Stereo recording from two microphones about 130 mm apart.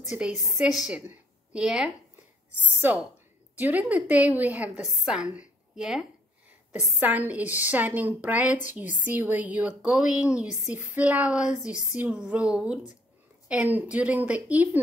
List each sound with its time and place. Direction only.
0.1 s a woman's voice: 5° right (ahead or behind)